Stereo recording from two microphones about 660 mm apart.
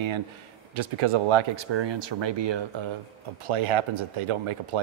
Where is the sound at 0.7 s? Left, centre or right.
Right.